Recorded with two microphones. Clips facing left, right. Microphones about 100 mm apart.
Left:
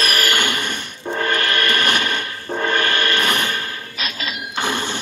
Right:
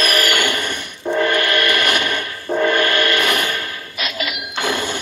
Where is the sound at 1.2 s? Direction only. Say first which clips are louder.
Right 1 dB; 30° left (ahead or behind).